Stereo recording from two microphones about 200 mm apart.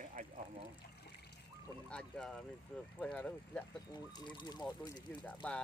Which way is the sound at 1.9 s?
5° left (ahead or behind).